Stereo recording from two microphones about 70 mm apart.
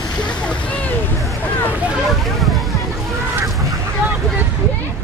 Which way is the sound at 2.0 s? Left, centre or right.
Centre.